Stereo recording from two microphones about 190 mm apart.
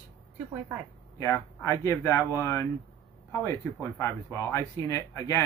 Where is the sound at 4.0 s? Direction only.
15° left (ahead or behind).